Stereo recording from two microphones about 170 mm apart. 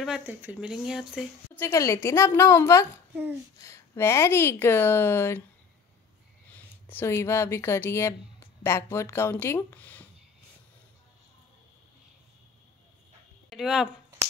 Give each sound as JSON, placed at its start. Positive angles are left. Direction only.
{"t": 0.0, "sound": "speech", "side_deg": -5}
{"t": 1.5, "sound": "speech", "side_deg": 15}
{"t": 6.5, "sound": "speech", "side_deg": 10}
{"t": 13.5, "sound": "speech", "side_deg": 0}